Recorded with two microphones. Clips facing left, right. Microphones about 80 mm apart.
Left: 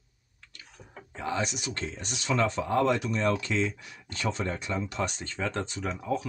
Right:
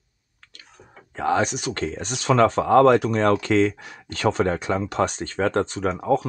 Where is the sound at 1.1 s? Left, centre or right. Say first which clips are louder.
Right 9 dB; right.